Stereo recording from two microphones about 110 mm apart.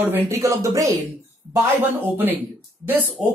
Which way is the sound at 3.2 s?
Centre (ahead or behind).